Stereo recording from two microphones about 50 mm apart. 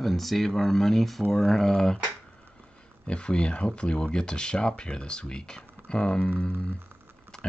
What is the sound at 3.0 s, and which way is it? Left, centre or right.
Speech, centre.